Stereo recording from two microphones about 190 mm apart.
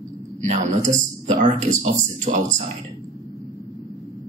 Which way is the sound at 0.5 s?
40° right (ahead or behind).